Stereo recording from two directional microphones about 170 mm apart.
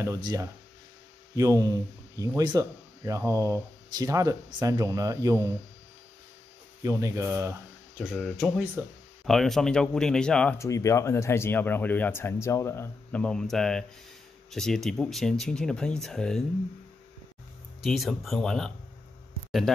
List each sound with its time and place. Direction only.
0.0 s speech: 20° right (ahead or behind)
6.8 s speech: 20° right (ahead or behind)
8.0 s speech: centre (ahead or behind)
10.6 s speech: 20° left (ahead or behind)
17.8 s speech: centre (ahead or behind)